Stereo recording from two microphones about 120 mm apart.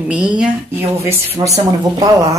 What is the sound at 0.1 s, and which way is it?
Speech, 10° right (ahead or behind).